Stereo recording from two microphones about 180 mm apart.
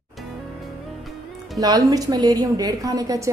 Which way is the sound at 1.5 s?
20° right (ahead or behind).